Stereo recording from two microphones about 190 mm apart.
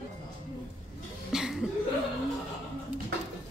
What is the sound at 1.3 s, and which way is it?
Cough, 5° right (ahead or behind).